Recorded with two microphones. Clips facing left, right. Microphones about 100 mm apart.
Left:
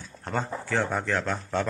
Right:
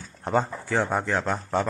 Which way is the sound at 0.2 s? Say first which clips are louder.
Right 6 dB; 15° right (ahead or behind).